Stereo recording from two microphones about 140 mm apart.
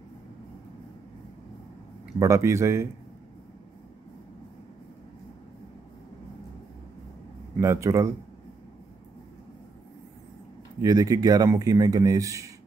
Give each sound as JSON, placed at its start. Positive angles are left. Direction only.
{"t": 2.1, "sound": "a man's voice", "side_deg": -20}
{"t": 7.6, "sound": "a man's voice", "side_deg": -20}
{"t": 10.8, "sound": "a man's voice", "side_deg": -25}